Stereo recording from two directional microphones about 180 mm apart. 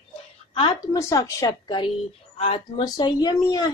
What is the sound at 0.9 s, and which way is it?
A woman's voice, 15° left (ahead or behind).